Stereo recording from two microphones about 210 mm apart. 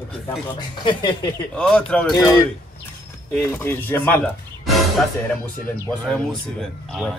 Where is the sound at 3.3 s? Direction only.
10° left (ahead or behind).